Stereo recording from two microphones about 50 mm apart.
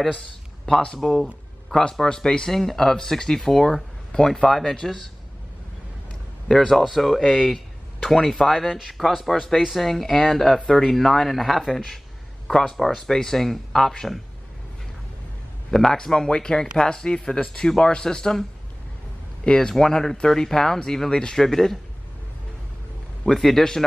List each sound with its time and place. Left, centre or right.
0.7 s speech: centre
6.5 s speech: centre
15.7 s speech: centre
19.4 s speech: centre
23.2 s speech: centre